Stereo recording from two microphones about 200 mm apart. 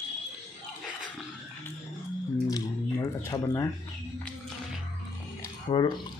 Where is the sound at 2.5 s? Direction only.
15° left (ahead or behind).